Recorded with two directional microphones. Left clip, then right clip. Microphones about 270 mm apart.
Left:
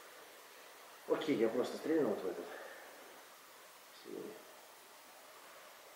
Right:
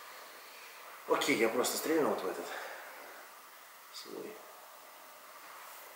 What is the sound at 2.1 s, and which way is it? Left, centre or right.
Speech, left.